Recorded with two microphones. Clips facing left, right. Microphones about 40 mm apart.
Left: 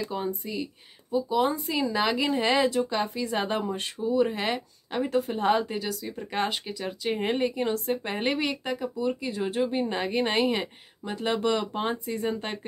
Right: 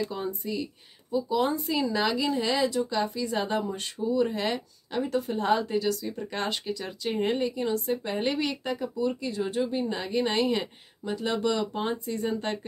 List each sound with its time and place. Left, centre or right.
0.1 s speech: centre
2.0 s speech: left
7.3 s speech: left
9.7 s speech: left
11.4 s speech: left